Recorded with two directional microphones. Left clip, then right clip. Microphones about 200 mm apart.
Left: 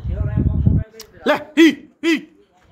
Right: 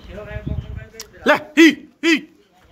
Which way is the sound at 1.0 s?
5° left (ahead or behind).